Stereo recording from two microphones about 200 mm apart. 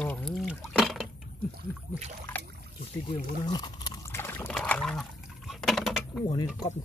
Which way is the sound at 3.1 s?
20° left (ahead or behind).